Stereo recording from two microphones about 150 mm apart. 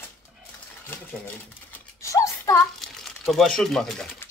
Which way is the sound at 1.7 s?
20° left (ahead or behind).